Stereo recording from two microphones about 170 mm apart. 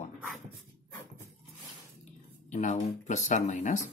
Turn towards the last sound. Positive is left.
turn(degrees=45)  # may be behind; listen again after turning